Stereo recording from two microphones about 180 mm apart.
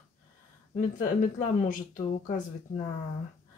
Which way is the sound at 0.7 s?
45° left (ahead or behind).